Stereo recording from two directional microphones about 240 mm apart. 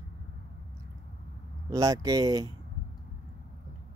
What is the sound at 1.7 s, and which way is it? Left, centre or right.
Speech, centre.